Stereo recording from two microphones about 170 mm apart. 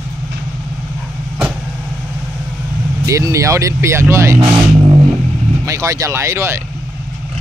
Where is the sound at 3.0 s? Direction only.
20° right (ahead or behind).